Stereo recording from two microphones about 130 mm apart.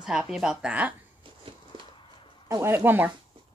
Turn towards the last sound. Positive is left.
turn(degrees=-15)  # may be behind; listen again after turning